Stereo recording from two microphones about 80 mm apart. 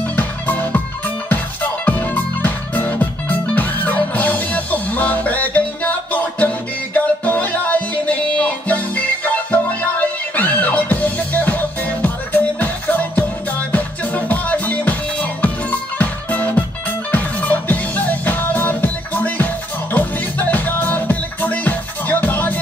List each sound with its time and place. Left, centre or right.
0.1 s music: left